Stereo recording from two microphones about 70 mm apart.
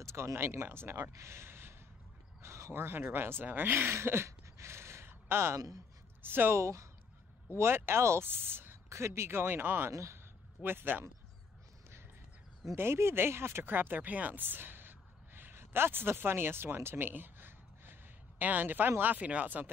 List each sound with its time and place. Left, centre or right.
0.0 s speech: right
1.1 s a sound: right
2.4 s speech: right
6.6 s speech: right
8.8 s speech: right
9.9 s speech: right
10.6 s speech: right
12.7 s speech: right